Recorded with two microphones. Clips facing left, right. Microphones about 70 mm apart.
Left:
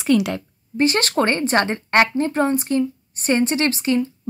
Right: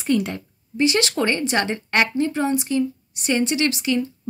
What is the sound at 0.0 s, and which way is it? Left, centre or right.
Speech, left.